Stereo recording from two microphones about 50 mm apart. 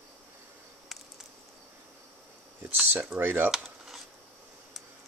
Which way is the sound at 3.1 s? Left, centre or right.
Right.